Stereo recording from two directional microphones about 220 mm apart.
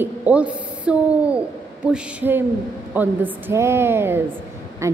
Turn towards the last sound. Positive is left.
turn(degrees=-15)  # may be behind; listen again after turning